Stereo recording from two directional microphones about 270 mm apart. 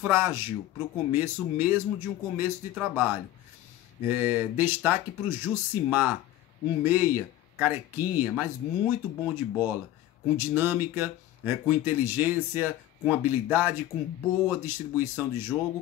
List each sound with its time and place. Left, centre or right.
0.0 s speech: centre